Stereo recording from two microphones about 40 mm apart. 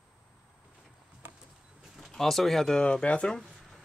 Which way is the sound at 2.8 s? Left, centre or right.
Left.